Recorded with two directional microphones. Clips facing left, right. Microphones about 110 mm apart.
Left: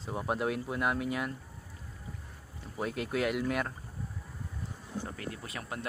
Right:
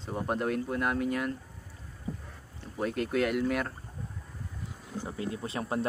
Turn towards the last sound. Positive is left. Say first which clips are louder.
# right 8 dB
turn(degrees=-30)  # may be behind; listen again after turning